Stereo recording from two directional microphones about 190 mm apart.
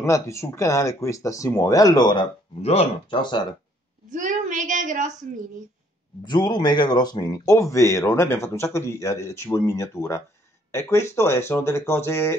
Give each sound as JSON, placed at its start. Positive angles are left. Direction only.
{"t": 0.0, "sound": "speech", "side_deg": 15}
{"t": 4.1, "sound": "a woman's voice", "side_deg": -40}
{"t": 6.2, "sound": "speech", "side_deg": 20}